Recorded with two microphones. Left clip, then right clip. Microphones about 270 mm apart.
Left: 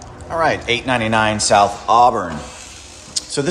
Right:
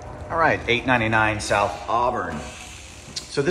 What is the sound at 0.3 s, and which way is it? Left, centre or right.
A man's voice, centre.